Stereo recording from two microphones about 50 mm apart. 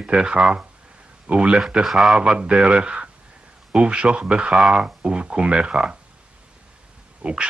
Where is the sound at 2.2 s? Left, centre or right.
Centre.